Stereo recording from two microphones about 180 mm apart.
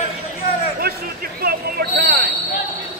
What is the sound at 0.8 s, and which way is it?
Basketball bounce, 55° right (ahead or behind).